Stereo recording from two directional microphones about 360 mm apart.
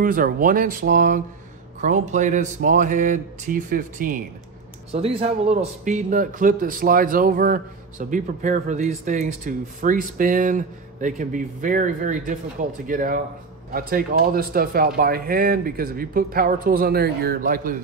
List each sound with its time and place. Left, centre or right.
0.0 s a man's voice: right